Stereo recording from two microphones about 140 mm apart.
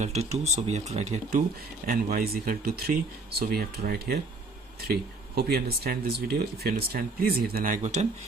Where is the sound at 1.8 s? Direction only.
90° right.